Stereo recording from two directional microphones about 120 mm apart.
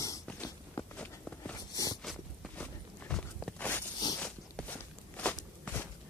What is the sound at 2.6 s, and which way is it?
Walk, 5° left (ahead or behind).